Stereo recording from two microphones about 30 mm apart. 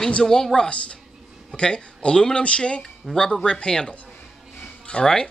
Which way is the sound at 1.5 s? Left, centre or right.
Left.